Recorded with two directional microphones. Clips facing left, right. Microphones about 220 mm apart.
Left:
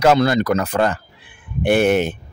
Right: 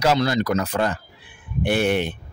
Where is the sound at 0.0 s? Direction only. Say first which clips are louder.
Left 5 dB; 55° left (ahead or behind).